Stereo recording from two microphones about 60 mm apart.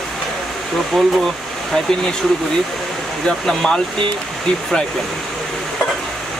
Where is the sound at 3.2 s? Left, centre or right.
Centre.